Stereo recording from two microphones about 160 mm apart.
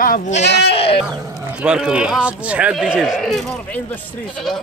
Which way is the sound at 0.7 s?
35° left (ahead or behind).